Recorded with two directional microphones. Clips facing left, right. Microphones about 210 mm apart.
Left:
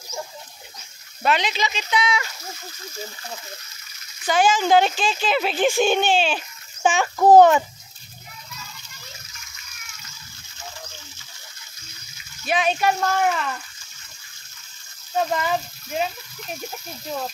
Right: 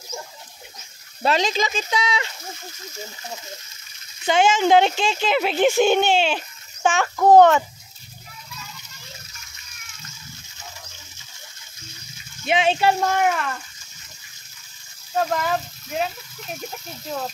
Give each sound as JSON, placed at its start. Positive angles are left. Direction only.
{"t": 1.2, "sound": "speech", "side_deg": -40}
{"t": 2.1, "sound": "speech", "side_deg": -25}
{"t": 6.8, "sound": "a child's voice", "side_deg": 0}
{"t": 12.4, "sound": "speech", "side_deg": -25}
{"t": 13.0, "sound": "speech", "side_deg": -10}
{"t": 15.1, "sound": "speech", "side_deg": 0}